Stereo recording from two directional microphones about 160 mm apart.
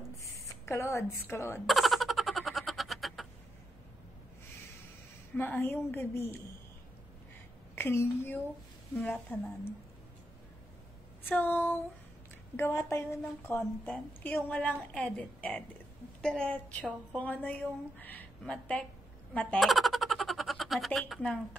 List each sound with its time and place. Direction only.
0.5 s a woman's voice: 20° left (ahead or behind)
1.7 s a sound: centre (ahead or behind)
5.3 s a woman's voice: 10° left (ahead or behind)
7.7 s a woman's voice: 15° left (ahead or behind)
11.2 s a woman's voice: 10° left (ahead or behind)
19.3 s a sound: 5° left (ahead or behind)